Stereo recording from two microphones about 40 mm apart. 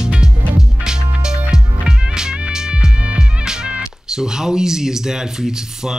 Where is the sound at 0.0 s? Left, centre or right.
Centre.